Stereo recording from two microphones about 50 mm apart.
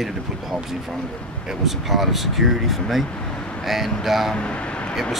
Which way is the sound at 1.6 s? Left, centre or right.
Centre.